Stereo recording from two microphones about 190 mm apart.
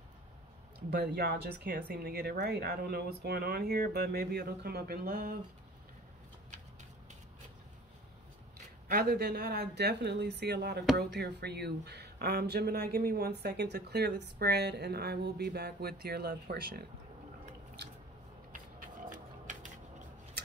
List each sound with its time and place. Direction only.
0.8 s speech: 60° right (ahead or behind)
8.8 s speech: 55° right (ahead or behind)
18.5 s a sound: 45° right (ahead or behind)